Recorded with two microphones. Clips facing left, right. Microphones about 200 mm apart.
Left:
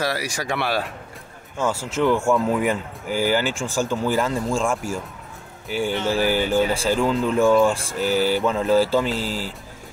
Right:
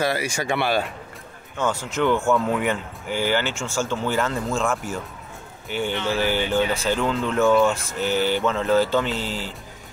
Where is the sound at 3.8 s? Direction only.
10° left (ahead or behind).